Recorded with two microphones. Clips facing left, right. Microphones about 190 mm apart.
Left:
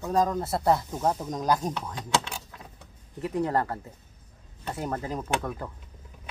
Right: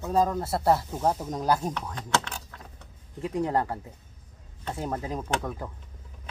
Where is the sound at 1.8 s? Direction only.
5° left (ahead or behind).